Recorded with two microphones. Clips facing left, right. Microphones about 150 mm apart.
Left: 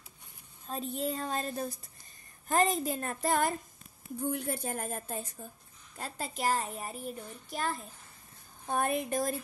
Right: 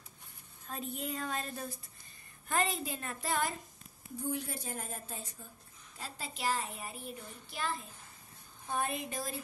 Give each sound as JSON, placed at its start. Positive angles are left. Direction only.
{"t": 0.7, "sound": "a woman's voice", "side_deg": 30}